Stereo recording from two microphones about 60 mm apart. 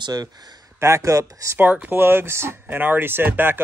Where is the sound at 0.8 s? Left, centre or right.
Right.